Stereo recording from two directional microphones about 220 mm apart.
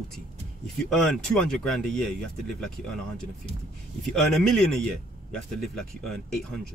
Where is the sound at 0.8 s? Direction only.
Centre (ahead or behind).